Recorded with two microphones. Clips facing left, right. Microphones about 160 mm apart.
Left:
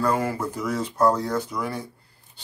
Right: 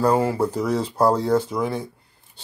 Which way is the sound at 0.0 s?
30° right (ahead or behind).